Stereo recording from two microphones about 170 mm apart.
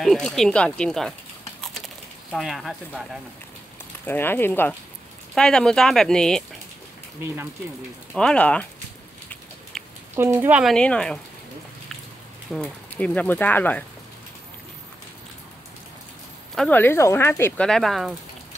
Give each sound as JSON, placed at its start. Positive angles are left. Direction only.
{"t": 0.0, "sound": "speech", "side_deg": 0}
{"t": 2.3, "sound": "speech", "side_deg": 0}
{"t": 4.0, "sound": "speech", "side_deg": 10}
{"t": 8.1, "sound": "speech", "side_deg": 5}
{"t": 9.3, "sound": "a sound", "side_deg": 0}
{"t": 10.1, "sound": "speech", "side_deg": -15}
{"t": 10.6, "sound": "speech", "side_deg": 5}
{"t": 12.5, "sound": "speech", "side_deg": 5}
{"t": 16.5, "sound": "speech", "side_deg": 10}